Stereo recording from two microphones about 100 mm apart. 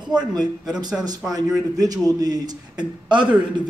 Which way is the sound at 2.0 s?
40° right (ahead or behind).